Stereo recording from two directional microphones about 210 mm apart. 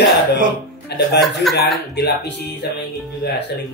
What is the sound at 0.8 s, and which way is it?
Speech, 50° left (ahead or behind).